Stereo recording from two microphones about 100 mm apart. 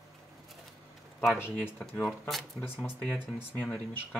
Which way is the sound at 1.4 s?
20° left (ahead or behind).